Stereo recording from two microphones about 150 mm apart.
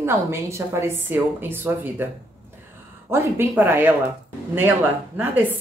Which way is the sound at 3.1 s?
15° right (ahead or behind).